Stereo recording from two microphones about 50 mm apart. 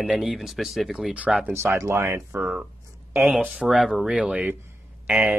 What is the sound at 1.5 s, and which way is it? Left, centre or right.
Speech, right.